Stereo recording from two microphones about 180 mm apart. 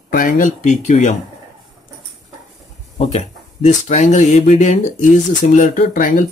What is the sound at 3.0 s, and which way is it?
Speech, 40° left (ahead or behind).